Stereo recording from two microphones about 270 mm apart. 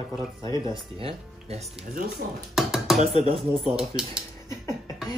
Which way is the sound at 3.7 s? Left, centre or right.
Centre.